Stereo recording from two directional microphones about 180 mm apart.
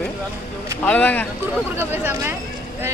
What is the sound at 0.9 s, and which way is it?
Speech, 10° left (ahead or behind).